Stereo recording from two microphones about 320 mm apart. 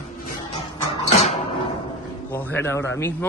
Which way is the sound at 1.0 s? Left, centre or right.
Centre.